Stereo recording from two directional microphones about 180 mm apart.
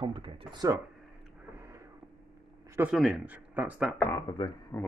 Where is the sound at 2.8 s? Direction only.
5° right (ahead or behind).